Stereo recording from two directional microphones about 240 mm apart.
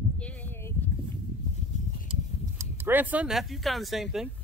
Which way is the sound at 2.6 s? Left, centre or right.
Centre.